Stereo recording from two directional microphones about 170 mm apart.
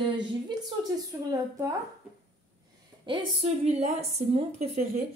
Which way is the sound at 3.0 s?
30° right (ahead or behind).